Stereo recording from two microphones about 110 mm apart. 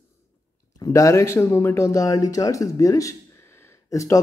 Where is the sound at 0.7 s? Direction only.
30° left (ahead or behind).